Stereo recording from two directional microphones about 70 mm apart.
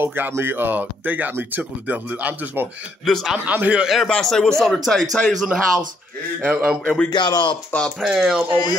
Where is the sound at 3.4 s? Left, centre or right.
Right.